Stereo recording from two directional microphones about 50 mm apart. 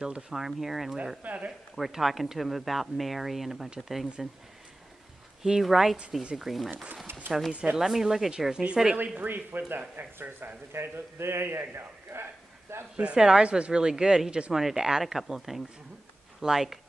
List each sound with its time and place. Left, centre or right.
0.3 s speech: centre
1.2 s speech: right
1.8 s speech: centre
5.4 s a woman's voice: centre
7.7 s a woman's voice: centre
8.9 s speech: right
10.7 s a man's voice: right
12.9 s a woman's voice: right; by 16.8 s centre